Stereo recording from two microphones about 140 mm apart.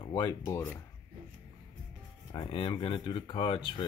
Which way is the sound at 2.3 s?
35° left (ahead or behind).